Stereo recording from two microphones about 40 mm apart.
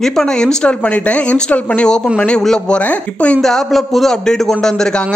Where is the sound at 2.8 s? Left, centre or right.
Left.